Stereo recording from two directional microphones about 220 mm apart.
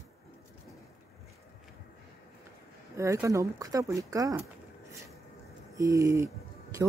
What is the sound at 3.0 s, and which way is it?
Speech, 15° right (ahead or behind).